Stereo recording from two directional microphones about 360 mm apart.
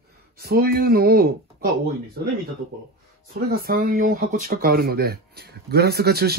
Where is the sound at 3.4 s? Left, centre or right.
Right.